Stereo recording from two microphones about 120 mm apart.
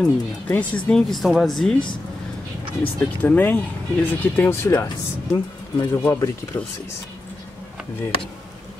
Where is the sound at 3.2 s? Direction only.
15° left (ahead or behind).